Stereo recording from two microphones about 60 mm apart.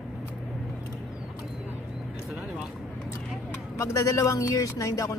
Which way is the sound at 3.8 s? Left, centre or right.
Left.